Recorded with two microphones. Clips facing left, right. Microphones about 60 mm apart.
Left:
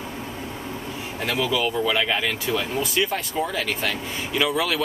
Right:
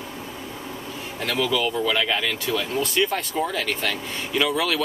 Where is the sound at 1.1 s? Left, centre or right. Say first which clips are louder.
Even; centre.